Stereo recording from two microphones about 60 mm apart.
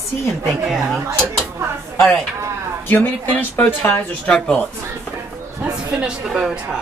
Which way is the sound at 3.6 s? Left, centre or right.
Centre.